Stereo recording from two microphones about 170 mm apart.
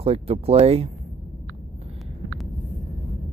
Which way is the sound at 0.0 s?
35° right (ahead or behind).